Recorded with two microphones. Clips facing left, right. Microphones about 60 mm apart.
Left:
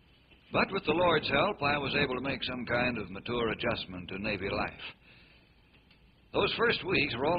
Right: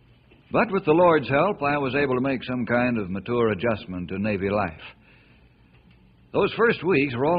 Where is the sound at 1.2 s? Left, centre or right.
Centre.